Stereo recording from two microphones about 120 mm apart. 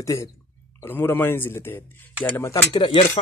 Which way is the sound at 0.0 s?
30° left (ahead or behind).